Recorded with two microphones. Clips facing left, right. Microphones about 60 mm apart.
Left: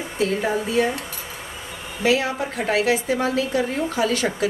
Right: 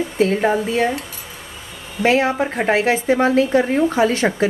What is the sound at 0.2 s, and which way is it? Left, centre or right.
Speech, right.